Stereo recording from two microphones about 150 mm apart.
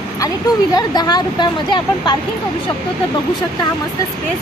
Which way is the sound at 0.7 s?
25° left (ahead or behind).